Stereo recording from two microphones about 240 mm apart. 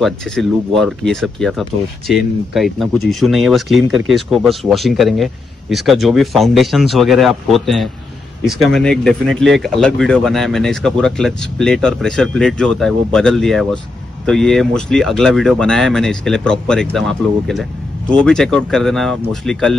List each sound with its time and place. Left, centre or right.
0.0 s speech: centre